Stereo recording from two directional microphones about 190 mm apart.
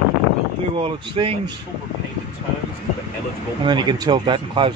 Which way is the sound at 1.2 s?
30° right (ahead or behind).